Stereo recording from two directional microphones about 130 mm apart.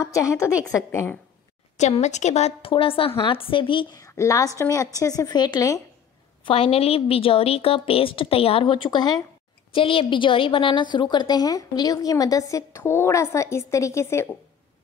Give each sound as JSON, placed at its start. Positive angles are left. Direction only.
{"t": 0.0, "sound": "a woman's voice", "side_deg": 25}
{"t": 1.8, "sound": "a woman's voice", "side_deg": 60}
{"t": 2.7, "sound": "a woman's voice", "side_deg": 45}
{"t": 4.0, "sound": "a woman's voice", "side_deg": 25}
{"t": 6.4, "sound": "a woman's voice", "side_deg": 45}
{"t": 9.7, "sound": "a woman's voice", "side_deg": 45}